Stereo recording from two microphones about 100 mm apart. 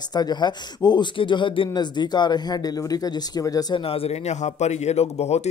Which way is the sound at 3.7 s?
70° left (ahead or behind).